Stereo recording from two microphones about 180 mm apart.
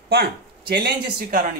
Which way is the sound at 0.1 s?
65° right (ahead or behind).